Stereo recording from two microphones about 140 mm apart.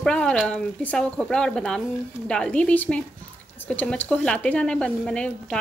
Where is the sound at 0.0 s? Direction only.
5° left (ahead or behind).